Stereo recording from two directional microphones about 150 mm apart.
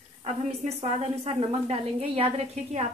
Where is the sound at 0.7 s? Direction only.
40° right (ahead or behind).